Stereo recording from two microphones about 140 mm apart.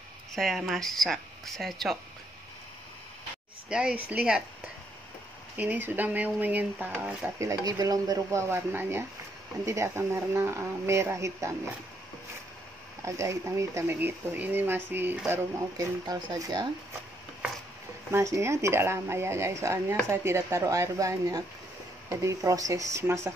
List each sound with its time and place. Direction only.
0.3 s speech: centre (ahead or behind)
3.6 s speech: 5° right (ahead or behind)
5.6 s speech: 15° right (ahead or behind)
7.3 s speech: 25° right (ahead or behind)
13.0 s speech: 20° right (ahead or behind)
16.1 s speech: 25° right (ahead or behind)
18.1 s speech: 20° right (ahead or behind)